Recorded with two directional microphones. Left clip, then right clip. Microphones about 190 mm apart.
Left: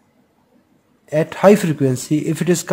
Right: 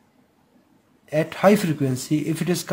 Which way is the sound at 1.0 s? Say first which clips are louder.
Left 6 dB; 30° left (ahead or behind).